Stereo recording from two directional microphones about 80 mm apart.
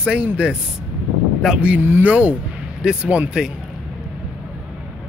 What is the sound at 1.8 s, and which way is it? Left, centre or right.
Speech, right.